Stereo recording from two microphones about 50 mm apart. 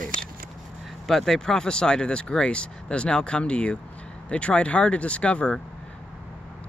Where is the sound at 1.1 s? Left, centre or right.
Centre.